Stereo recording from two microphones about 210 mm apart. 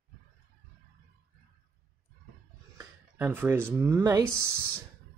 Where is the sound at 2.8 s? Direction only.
10° right (ahead or behind).